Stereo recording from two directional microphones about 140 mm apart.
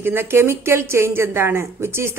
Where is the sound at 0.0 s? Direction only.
15° right (ahead or behind).